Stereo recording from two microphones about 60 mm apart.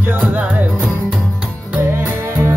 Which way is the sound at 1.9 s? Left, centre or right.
Right.